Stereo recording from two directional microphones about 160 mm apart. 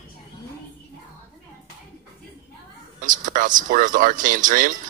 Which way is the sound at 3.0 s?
55° right (ahead or behind).